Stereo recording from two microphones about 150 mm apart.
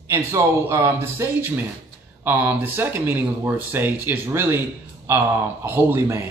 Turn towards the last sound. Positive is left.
turn(degrees=-15)  # may be behind; listen again after turning